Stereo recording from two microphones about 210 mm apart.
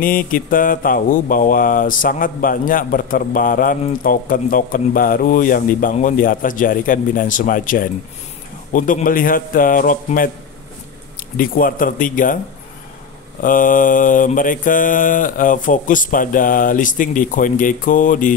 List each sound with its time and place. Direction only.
0.0 s mantra: 40° left (ahead or behind)
11.3 s mantra: 40° left (ahead or behind)
13.4 s mantra: 40° left (ahead or behind)